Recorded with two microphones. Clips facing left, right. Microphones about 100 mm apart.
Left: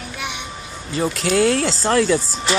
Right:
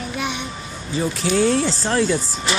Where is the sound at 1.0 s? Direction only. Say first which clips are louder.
Left 1 dB; 90° left.